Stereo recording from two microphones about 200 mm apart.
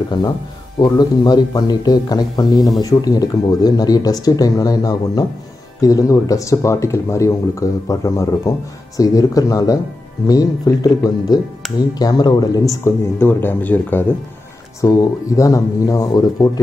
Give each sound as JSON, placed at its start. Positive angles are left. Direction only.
{"t": 0.7, "sound": "speech", "side_deg": 20}